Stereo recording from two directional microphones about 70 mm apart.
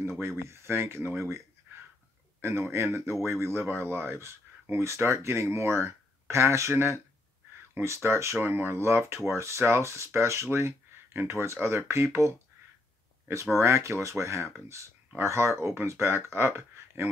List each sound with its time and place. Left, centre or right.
0.4 s speech: right
2.4 s speech: right